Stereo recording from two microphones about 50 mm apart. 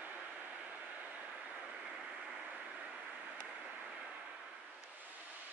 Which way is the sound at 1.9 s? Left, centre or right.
Centre.